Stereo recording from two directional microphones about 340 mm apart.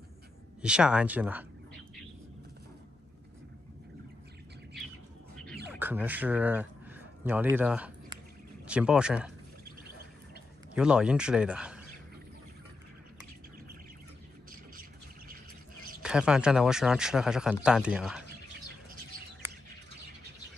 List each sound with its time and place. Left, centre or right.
0.6 s speech: centre
5.7 s a sound: centre
8.6 s speech: centre
10.7 s speech: centre
14.5 s bird: right
16.0 s speech: centre